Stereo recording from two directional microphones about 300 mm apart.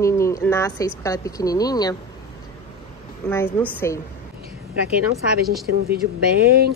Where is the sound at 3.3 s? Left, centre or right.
Centre.